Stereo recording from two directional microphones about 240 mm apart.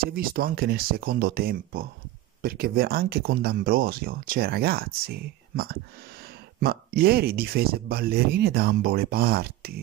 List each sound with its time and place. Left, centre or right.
0.0 s speech: right